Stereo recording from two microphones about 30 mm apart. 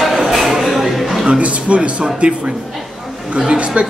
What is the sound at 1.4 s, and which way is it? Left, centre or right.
Speech, right.